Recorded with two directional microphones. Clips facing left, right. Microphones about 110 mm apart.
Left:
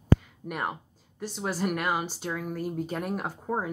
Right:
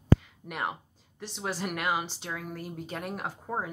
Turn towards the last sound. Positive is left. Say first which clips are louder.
# left 3 dB
turn(degrees=0)  # may be behind; listen again after turning